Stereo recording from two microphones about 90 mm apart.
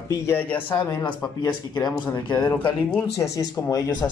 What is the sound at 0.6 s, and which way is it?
Speech, 60° left (ahead or behind).